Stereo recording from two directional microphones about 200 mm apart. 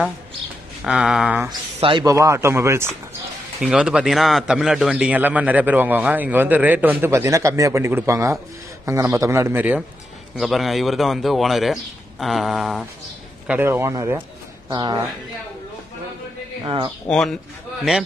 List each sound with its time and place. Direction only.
0.8 s a man's voice: 5° right (ahead or behind)
1.8 s a man's voice: 25° right (ahead or behind)
16.6 s speech: 25° right (ahead or behind)
17.1 s a man's voice: centre (ahead or behind)